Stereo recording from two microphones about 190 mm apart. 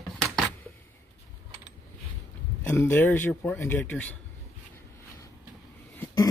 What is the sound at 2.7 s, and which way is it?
Speech, 10° left (ahead or behind).